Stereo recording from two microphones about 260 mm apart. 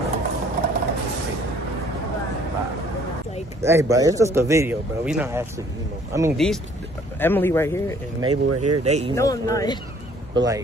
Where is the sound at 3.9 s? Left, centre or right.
Centre.